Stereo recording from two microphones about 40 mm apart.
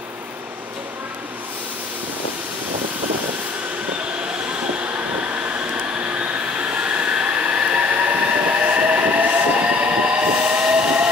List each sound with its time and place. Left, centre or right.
4.9 s train: right